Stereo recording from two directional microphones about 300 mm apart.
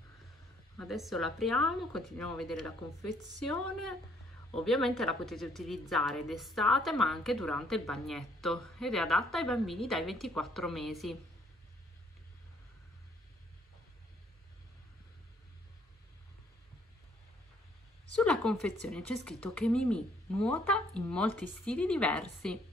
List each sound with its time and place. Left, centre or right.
0.7 s a woman's voice: centre
18.1 s a woman's voice: centre